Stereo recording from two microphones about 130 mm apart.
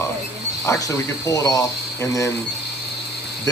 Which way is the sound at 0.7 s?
25° left (ahead or behind).